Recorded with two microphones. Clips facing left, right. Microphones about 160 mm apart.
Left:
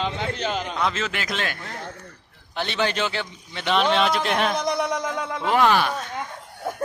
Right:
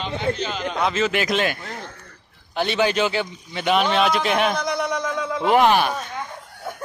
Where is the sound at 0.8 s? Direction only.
10° right (ahead or behind).